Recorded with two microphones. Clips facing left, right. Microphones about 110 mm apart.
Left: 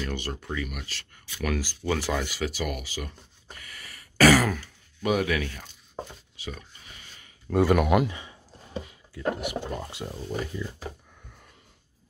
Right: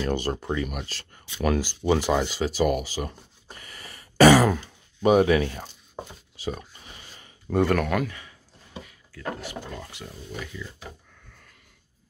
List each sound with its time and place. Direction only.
0.0 s speech: 35° right (ahead or behind)
6.3 s a sound: 35° right (ahead or behind)
7.6 s speech: 10° left (ahead or behind); by 10.6 s 35° left (ahead or behind)